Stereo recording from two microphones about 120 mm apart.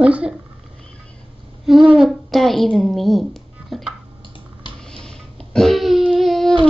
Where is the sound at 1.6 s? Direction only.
5° right (ahead or behind).